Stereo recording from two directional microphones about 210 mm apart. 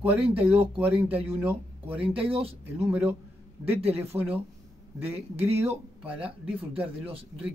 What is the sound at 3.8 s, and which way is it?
Speech, 30° right (ahead or behind).